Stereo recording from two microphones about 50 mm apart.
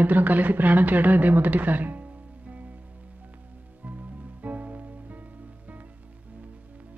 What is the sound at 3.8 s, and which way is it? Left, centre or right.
Music, right.